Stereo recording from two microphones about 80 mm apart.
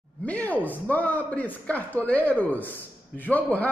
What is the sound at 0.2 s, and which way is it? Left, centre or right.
A man's voice, centre.